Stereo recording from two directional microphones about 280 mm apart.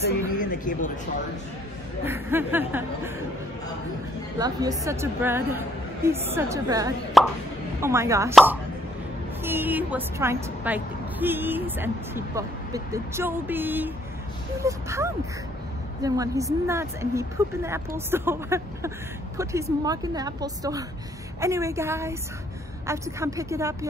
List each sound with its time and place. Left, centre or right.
0.4 s a sound: left
2.0 s a woman's voice: centre
4.4 s a woman's voice: centre
7.2 s a woman's voice: centre
9.4 s a woman's voice: centre